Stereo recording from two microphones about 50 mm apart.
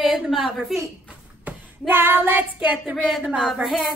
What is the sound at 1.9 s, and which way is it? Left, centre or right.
Child singing, right.